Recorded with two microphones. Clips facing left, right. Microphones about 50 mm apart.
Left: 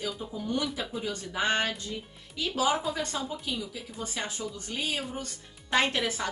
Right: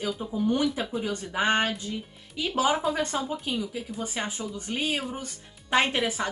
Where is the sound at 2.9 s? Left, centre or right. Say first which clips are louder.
Right 4 dB; right.